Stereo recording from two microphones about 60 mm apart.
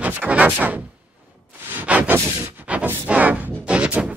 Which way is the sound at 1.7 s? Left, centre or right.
Right.